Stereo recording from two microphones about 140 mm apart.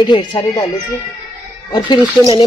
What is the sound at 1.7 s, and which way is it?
Speech, 35° left (ahead or behind).